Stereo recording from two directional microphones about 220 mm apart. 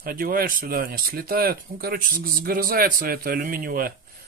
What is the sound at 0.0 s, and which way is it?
Speech, 40° right (ahead or behind).